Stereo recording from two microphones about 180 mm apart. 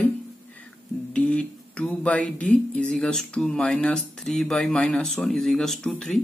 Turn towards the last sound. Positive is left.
turn(degrees=5)  # may be behind; listen again after turning